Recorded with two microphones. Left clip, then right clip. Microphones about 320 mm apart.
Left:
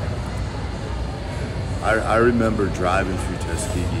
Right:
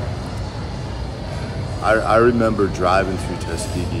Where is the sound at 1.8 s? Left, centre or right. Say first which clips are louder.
Right 3 dB; centre.